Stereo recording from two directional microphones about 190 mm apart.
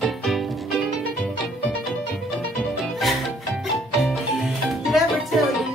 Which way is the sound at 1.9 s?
Centre (ahead or behind).